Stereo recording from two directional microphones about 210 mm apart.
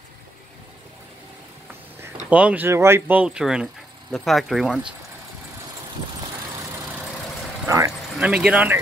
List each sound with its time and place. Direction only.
2.2 s speech: 5° right (ahead or behind)
7.6 s vehicle: 15° right (ahead or behind)
8.3 s speech: 5° right (ahead or behind)